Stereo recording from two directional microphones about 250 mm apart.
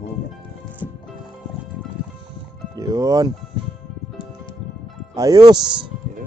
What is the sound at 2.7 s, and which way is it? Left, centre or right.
Speech, centre.